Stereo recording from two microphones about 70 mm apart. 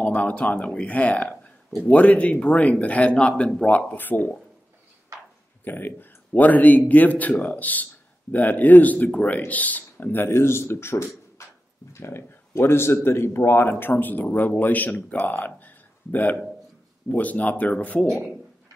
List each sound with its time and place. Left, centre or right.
0.0 s a man's voice: centre
3.9 s speech: left
5.6 s speech: left
15.1 s a sound: left
17.1 s speech: left